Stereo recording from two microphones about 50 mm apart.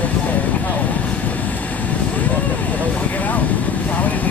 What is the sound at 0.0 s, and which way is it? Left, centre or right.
Vehicle, left.